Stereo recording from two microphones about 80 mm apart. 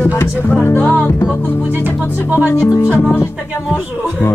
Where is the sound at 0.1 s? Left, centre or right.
Left.